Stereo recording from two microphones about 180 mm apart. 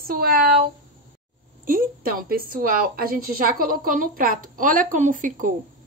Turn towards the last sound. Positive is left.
turn(degrees=-45)  # may be behind; listen again after turning